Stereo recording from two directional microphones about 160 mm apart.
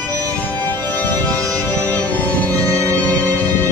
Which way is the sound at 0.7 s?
10° left (ahead or behind).